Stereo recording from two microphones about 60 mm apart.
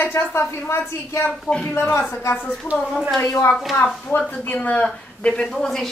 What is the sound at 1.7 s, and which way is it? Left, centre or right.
Speech, left.